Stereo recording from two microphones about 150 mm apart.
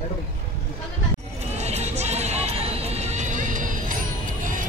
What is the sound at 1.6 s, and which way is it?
Music, 45° right (ahead or behind).